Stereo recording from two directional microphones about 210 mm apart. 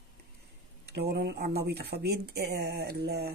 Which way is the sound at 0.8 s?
50° right (ahead or behind).